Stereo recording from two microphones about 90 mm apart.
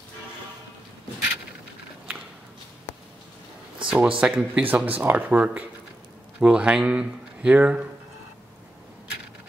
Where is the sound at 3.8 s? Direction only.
10° right (ahead or behind).